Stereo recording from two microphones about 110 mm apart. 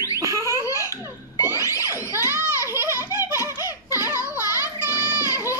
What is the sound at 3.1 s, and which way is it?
Baby laughter, 25° right (ahead or behind).